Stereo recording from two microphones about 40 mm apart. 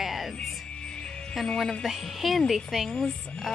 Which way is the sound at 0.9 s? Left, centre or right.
Left.